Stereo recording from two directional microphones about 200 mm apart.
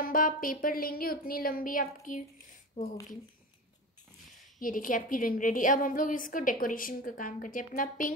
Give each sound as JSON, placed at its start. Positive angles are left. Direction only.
{"t": 0.0, "sound": "a woman's voice", "side_deg": 45}
{"t": 4.6, "sound": "a woman's voice", "side_deg": 45}